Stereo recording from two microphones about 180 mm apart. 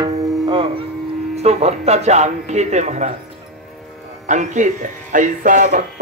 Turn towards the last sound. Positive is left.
turn(degrees=-45)  # may be behind; listen again after turning